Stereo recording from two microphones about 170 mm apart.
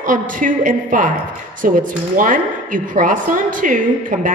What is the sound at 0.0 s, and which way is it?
A woman's voice, 50° right (ahead or behind).